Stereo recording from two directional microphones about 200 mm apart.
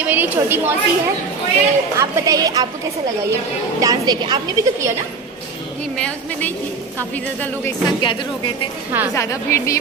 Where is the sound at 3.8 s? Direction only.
20° right (ahead or behind).